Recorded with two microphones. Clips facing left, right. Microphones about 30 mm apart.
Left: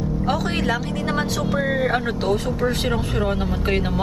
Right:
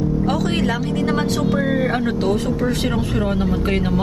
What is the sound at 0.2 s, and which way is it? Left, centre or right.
Speech, centre.